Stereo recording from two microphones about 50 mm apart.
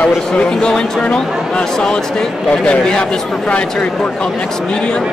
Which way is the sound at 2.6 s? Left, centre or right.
Centre.